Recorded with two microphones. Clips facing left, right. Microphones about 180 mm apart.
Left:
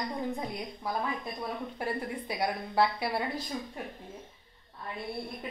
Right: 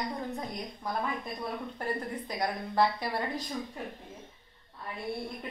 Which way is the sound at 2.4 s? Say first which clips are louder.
Even; 10° left (ahead or behind).